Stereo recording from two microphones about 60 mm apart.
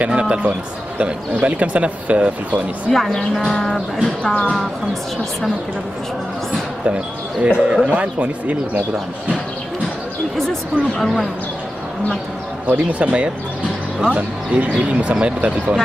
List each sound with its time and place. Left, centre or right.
0.0 s speech: centre
2.9 s speech: centre
4.0 s speech: centre
7.4 s speech: centre
12.6 s speech: right